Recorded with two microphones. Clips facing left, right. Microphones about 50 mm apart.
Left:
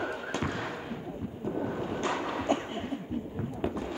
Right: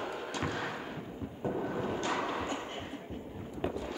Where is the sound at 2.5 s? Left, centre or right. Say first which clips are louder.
Left 9 dB; left.